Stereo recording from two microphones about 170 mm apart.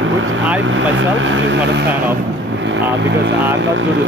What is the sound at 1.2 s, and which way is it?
Speech, 90° right.